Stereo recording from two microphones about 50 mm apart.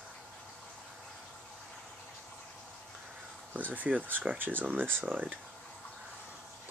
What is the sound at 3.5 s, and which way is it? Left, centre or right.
Speech, right.